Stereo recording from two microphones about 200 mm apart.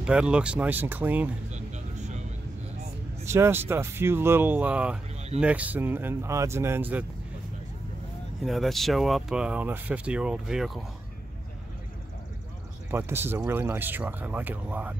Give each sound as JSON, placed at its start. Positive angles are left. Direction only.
{"t": 0.0, "sound": "speech", "side_deg": -5}
{"t": 1.5, "sound": "a sound", "side_deg": -35}
{"t": 3.3, "sound": "speech", "side_deg": -10}
{"t": 8.5, "sound": "speech", "side_deg": 0}
{"t": 12.9, "sound": "speech", "side_deg": -10}